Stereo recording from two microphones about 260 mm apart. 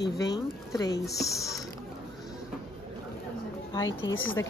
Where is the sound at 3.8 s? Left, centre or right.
Left.